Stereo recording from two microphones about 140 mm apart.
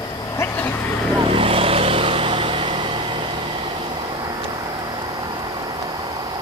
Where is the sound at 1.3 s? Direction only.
40° right (ahead or behind).